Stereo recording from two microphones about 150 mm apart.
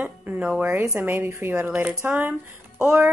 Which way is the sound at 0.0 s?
10° right (ahead or behind).